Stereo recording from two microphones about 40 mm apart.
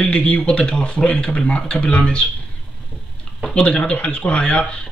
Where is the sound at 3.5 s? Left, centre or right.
Left.